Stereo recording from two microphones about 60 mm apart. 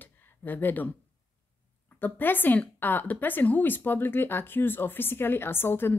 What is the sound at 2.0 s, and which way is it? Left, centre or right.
A woman's voice, left.